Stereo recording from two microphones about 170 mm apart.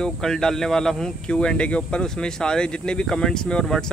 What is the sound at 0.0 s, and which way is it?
Speech, 5° left (ahead or behind).